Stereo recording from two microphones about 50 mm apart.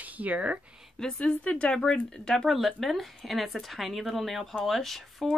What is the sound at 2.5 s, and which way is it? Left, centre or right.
A woman's voice, centre.